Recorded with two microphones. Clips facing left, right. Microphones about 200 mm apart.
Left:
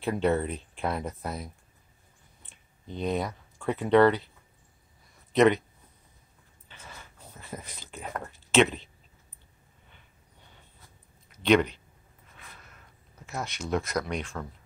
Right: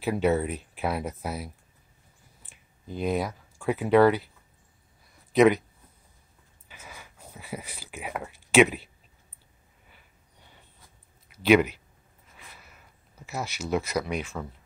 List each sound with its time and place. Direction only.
0.0 s speech: 5° right (ahead or behind)
5.3 s speech: centre (ahead or behind)
6.7 s a sound: 10° right (ahead or behind)
11.3 s speech: 5° right (ahead or behind)